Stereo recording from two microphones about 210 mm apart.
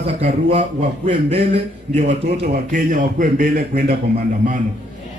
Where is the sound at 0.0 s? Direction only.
30° right (ahead or behind).